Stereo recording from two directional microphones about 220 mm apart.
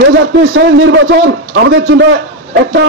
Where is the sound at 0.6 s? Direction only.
55° right (ahead or behind).